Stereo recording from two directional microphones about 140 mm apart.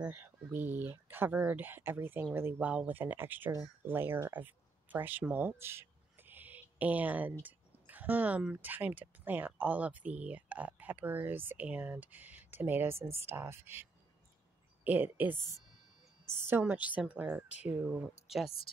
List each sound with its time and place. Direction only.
0.0 s speech: 15° right (ahead or behind)
14.9 s speech: 10° right (ahead or behind)